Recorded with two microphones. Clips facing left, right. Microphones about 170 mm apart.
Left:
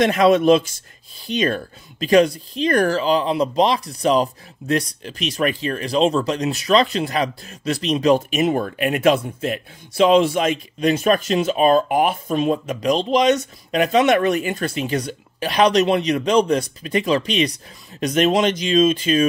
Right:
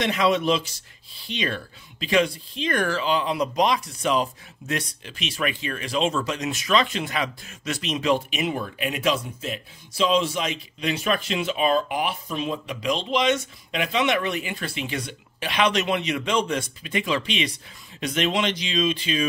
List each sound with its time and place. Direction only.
0.0 s speech: 50° left (ahead or behind)